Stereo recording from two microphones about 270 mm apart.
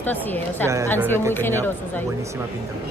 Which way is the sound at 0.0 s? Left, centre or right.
Centre.